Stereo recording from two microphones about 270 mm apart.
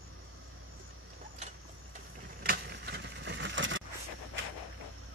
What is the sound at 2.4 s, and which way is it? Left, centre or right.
Vehicle, right.